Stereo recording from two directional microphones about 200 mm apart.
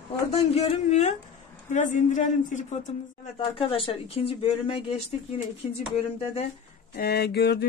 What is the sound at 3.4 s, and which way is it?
A woman's voice, 25° left (ahead or behind).